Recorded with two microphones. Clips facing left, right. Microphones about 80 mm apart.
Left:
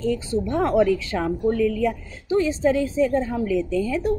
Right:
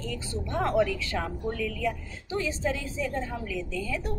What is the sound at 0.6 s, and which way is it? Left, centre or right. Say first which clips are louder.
Speech: left 6 dB; left.